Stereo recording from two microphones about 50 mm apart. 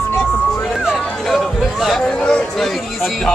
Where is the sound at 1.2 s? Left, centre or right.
Centre.